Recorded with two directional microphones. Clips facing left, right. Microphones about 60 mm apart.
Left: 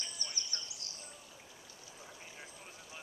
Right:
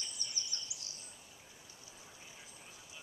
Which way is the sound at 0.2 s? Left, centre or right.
Left.